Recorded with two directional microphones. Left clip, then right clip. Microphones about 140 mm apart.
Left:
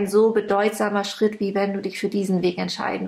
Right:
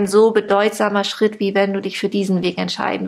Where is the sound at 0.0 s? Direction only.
30° right (ahead or behind).